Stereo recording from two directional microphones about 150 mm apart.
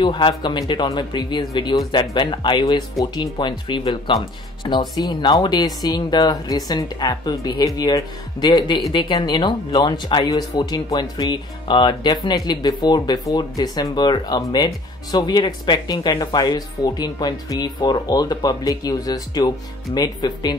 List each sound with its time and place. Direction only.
0.0 s speech: 35° left (ahead or behind)